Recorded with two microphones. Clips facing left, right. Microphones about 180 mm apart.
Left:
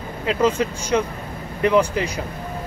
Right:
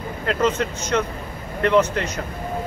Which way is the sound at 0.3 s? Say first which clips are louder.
Left 2 dB; 10° left (ahead or behind).